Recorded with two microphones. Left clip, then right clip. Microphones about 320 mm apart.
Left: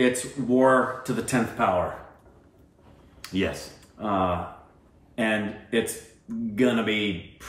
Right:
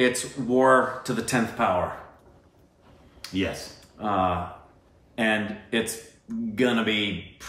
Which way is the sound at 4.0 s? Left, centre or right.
Centre.